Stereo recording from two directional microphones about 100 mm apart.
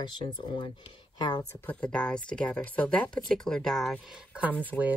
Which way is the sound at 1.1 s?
45° left (ahead or behind).